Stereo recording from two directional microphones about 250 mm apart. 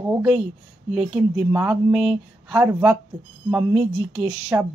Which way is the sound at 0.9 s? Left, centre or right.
Centre.